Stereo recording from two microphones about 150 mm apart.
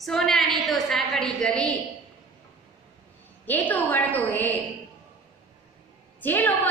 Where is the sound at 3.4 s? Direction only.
10° left (ahead or behind).